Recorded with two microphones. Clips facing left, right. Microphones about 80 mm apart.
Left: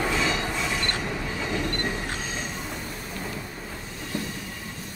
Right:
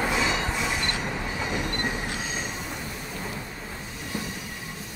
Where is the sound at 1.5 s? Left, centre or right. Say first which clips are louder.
Left 2 dB; centre.